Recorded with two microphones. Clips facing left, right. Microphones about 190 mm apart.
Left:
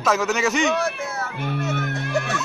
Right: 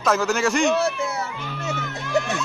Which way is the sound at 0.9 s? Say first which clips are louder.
Right 2 dB; 60° left (ahead or behind).